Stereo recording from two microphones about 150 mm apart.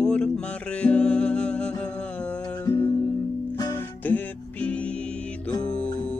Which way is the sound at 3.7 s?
10° left (ahead or behind).